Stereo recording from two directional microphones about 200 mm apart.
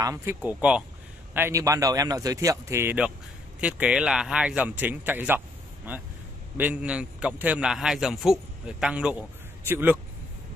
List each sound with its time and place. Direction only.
0.0 s speech: 15° right (ahead or behind)
6.5 s a man's voice: 10° right (ahead or behind)